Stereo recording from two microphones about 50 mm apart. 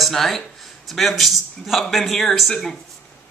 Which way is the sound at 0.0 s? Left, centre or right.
Centre.